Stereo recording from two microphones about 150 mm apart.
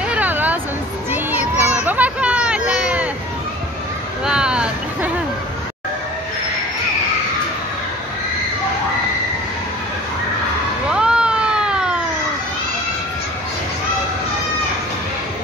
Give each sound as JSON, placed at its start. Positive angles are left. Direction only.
{"t": 0.1, "sound": "hubbub", "side_deg": -10}
{"t": 1.1, "sound": "child singing", "side_deg": -10}
{"t": 1.9, "sound": "hubbub", "side_deg": -10}
{"t": 4.2, "sound": "a sound", "side_deg": -5}
{"t": 10.9, "sound": "cat", "side_deg": -5}